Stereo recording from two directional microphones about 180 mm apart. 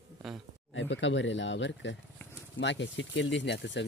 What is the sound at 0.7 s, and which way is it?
Speech, 90° left.